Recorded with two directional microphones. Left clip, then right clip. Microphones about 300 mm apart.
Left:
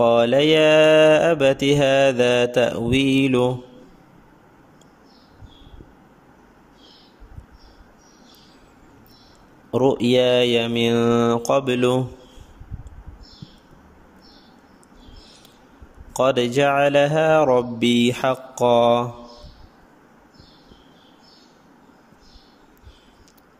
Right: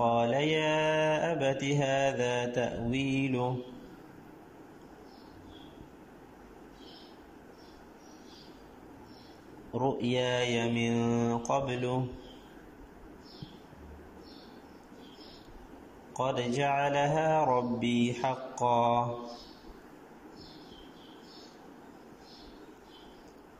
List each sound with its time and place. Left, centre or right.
0.0 s mantra: left
2.1 s speech: left
9.7 s speech: left
16.3 s speech: left
17.3 s mantra: left